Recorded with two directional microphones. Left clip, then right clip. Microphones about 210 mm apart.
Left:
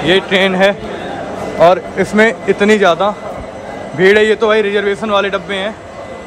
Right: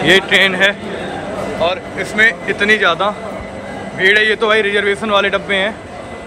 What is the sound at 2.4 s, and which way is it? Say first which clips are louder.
Speech: left 3 dB; 30° left (ahead or behind).